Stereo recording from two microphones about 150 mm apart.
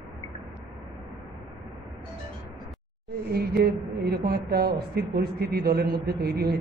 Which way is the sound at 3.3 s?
90° right.